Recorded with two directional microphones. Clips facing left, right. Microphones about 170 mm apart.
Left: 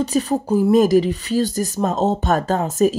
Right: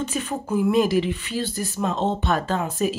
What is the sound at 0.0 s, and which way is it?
Speech, 35° left (ahead or behind).